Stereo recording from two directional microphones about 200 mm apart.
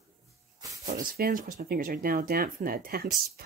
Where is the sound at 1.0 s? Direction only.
45° right (ahead or behind).